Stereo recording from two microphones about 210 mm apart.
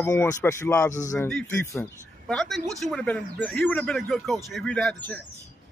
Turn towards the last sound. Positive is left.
turn(degrees=5)  # may be behind; listen again after turning